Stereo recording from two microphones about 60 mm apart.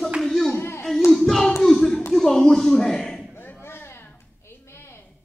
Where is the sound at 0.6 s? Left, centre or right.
Left.